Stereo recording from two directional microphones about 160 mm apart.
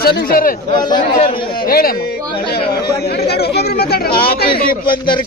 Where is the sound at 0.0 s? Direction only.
70° left (ahead or behind).